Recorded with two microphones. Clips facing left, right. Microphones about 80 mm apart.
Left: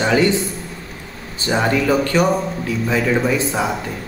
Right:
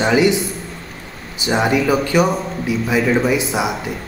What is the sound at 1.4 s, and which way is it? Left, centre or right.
Speech, centre.